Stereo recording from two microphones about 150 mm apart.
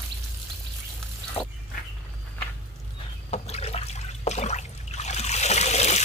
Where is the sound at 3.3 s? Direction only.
45° left (ahead or behind).